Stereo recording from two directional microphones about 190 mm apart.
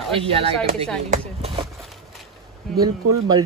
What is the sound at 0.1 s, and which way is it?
Speech, 30° right (ahead or behind).